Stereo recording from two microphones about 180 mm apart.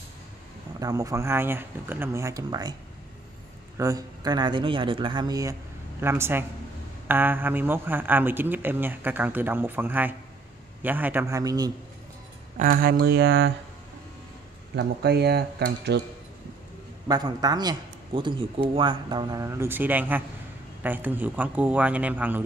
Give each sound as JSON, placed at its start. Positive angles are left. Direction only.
{"t": 0.7, "sound": "speech", "side_deg": -20}
{"t": 3.7, "sound": "speech", "side_deg": -20}
{"t": 12.5, "sound": "speech", "side_deg": -50}
{"t": 14.8, "sound": "speech", "side_deg": -65}
{"t": 17.1, "sound": "a man's voice", "side_deg": -20}